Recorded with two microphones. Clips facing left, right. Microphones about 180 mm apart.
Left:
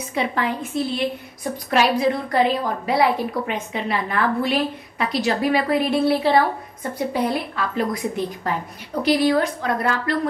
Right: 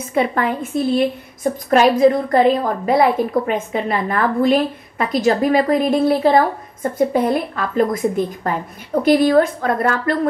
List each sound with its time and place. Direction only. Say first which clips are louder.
0.0 s a woman's voice: right 5 dB; 55° right (ahead or behind)